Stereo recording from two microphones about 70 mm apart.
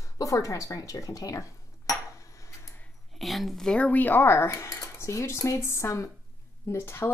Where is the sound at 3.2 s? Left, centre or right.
Centre; by 4.8 s left.